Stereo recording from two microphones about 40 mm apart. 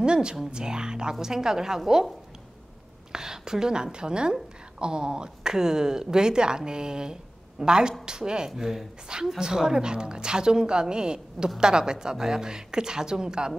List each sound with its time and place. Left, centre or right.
0.0 s a woman's voice: right
3.1 s a woman's voice: centre